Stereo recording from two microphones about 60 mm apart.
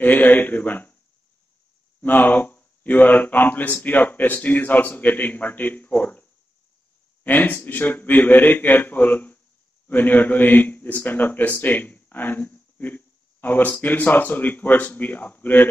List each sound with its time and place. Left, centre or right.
0.0 s a man's voice: left
2.0 s speech: left
7.2 s a man's voice: left